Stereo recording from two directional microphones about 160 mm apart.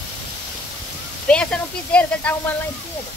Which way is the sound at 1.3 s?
5° left (ahead or behind).